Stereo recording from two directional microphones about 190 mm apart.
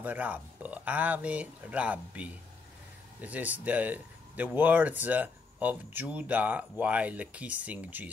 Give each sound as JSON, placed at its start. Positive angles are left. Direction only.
{"t": 0.0, "sound": "speech", "side_deg": -10}